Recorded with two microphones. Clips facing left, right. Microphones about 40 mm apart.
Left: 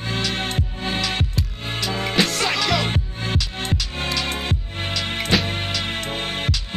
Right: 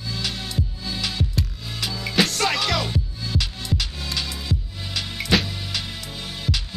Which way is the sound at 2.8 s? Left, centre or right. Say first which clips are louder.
Left 3 dB; left.